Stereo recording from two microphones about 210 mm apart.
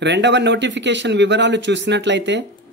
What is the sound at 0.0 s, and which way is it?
A man's voice, 55° right (ahead or behind).